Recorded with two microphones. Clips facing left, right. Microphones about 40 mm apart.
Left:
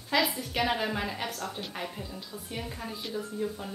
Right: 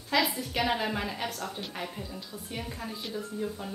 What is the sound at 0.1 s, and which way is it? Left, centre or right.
A woman's voice, centre.